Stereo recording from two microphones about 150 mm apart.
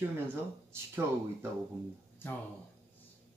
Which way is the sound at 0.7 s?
15° right (ahead or behind).